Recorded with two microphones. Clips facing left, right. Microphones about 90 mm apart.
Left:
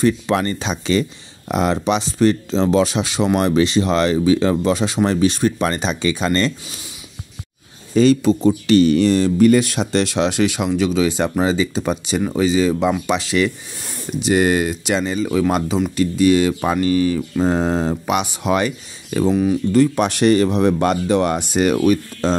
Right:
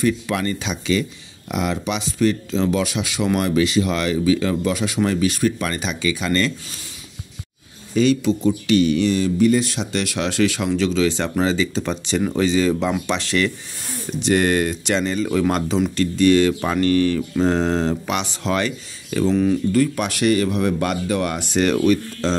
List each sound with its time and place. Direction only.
0.0 s speech: 35° left (ahead or behind)
7.9 s speech: 40° left (ahead or behind)
9.4 s speech: 60° left (ahead or behind)
9.9 s speech: 25° left (ahead or behind)
19.3 s speech: 10° left (ahead or behind)
19.7 s speech: 25° left (ahead or behind)
21.5 s speech: 15° left (ahead or behind)